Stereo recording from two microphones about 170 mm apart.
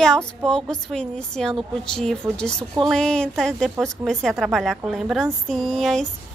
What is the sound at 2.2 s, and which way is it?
Speech, 15° right (ahead or behind).